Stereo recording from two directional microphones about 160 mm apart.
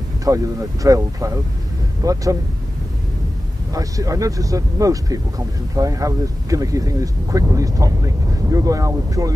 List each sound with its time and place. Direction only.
0.2 s speech: 20° right (ahead or behind)
3.7 s speech: 20° right (ahead or behind)